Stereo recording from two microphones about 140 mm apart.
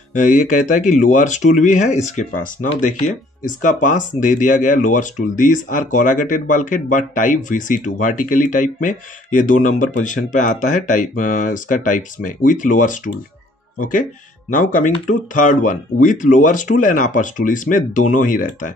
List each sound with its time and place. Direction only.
0.1 s speech: 60° left (ahead or behind)
2.1 s speech: 70° left (ahead or behind)